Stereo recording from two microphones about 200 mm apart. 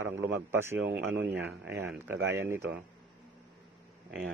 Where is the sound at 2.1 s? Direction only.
65° right (ahead or behind).